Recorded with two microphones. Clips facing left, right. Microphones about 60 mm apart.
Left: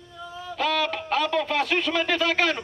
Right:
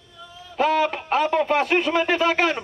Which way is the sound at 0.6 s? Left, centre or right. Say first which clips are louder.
Right 5 dB; right.